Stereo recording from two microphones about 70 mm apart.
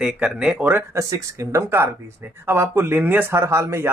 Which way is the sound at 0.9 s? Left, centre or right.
Right.